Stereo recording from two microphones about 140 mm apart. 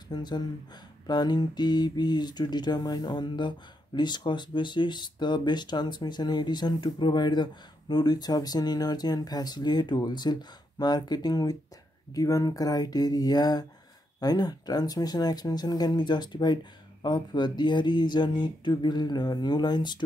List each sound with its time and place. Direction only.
0.1 s speech: 30° left (ahead or behind)